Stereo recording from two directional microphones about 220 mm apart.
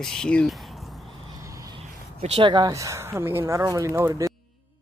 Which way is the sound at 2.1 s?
25° right (ahead or behind).